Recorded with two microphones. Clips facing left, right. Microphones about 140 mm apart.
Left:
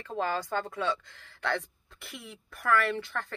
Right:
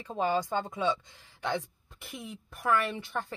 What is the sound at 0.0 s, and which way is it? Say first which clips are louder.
Speech: right 2 dB; 20° right (ahead or behind).